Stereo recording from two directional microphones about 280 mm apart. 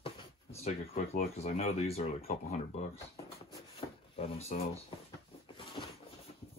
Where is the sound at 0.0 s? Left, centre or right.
Left.